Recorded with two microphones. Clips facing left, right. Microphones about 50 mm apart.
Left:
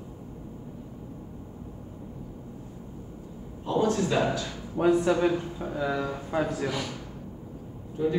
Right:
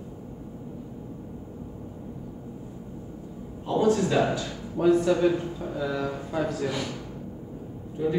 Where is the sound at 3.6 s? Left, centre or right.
Centre.